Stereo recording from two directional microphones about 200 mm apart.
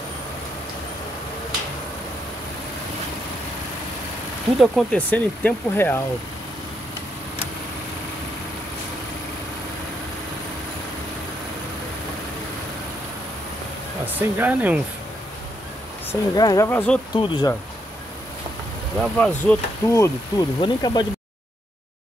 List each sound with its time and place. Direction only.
4.6 s speech: 5° left (ahead or behind)
14.0 s speech: 10° right (ahead or behind)
16.1 s speech: 15° left (ahead or behind)
17.1 s speech: 20° left (ahead or behind)
18.9 s speech: 5° left (ahead or behind); by 21.1 s 20° left (ahead or behind)